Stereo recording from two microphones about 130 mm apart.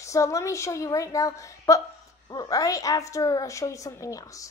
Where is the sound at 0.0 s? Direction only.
25° left (ahead or behind).